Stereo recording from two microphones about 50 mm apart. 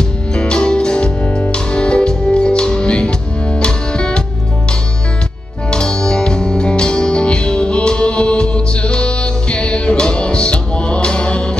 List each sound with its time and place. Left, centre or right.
0.3 s music: centre
1.2 s music: left
1.5 s music: left
5.7 s music: centre